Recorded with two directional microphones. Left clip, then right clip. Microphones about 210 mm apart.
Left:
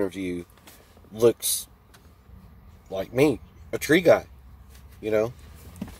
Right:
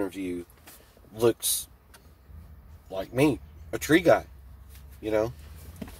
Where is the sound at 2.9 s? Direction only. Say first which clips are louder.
Left 3 dB; 15° left (ahead or behind).